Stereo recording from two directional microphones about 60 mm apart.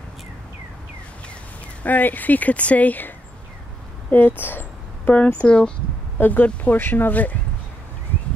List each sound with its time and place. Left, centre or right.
1.8 s speech: left
4.1 s speech: left
5.2 s speech: centre
6.1 s speech: left